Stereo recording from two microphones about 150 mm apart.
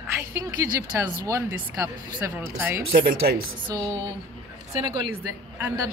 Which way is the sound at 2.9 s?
85° right.